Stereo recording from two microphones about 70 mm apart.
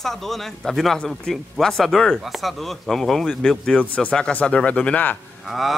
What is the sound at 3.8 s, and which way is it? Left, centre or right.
Speech, left.